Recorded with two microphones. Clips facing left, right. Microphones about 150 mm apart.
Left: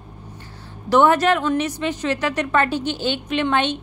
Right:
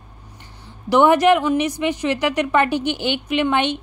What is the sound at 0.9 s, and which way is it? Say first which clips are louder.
Speech: right 2 dB; 15° right (ahead or behind).